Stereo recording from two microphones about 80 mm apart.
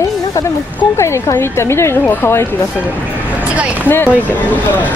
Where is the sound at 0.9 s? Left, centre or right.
Left.